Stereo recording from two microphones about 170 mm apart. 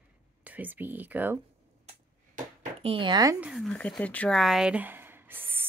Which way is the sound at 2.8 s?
30° right (ahead or behind).